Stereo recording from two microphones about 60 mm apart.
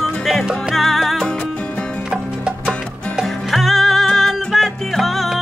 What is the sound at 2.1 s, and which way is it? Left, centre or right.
Music, centre.